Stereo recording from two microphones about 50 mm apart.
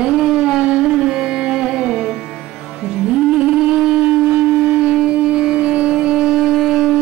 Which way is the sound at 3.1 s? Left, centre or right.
Centre.